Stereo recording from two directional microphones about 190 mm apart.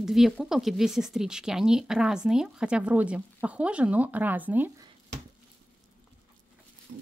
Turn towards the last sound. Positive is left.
turn(degrees=-50)  # may be behind; listen again after turning